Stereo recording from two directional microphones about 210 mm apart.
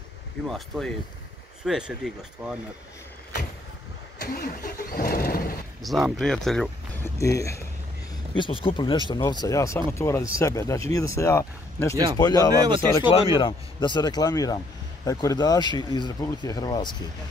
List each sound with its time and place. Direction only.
0.5 s speech: centre (ahead or behind)
4.2 s vehicle: 45° left (ahead or behind)
5.8 s speech: centre (ahead or behind)
7.2 s speech: 15° left (ahead or behind)